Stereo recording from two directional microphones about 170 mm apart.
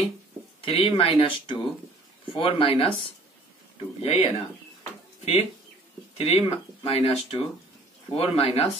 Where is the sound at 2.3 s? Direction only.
30° left (ahead or behind).